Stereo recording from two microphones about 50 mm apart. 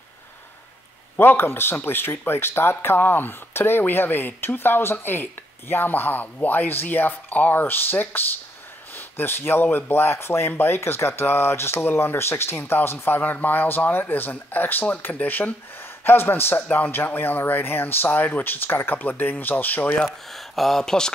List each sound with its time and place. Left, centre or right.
1.1 s speech: left
20.5 s speech: centre